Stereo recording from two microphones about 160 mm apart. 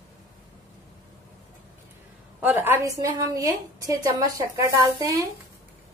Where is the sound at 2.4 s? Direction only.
10° right (ahead or behind).